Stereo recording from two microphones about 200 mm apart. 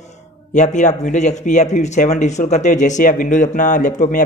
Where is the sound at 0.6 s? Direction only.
35° left (ahead or behind).